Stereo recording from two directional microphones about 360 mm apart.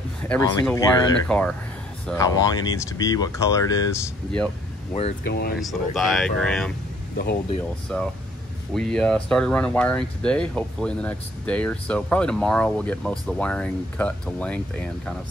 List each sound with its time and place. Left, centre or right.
0.2 s speech: centre
4.9 s speech: left
5.6 s speech: centre
7.9 s speech: centre